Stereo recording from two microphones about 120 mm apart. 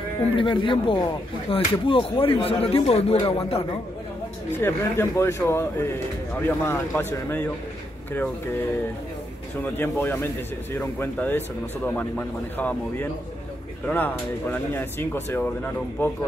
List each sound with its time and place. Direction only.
0.4 s speech: 45° left (ahead or behind)
4.6 s a man's voice: 20° left (ahead or behind)
9.8 s speech: 15° left (ahead or behind)